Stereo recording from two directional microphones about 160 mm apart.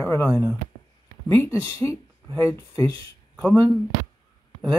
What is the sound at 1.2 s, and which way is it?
Speech, 15° left (ahead or behind).